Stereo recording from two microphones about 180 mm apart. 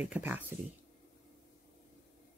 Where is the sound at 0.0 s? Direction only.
10° right (ahead or behind).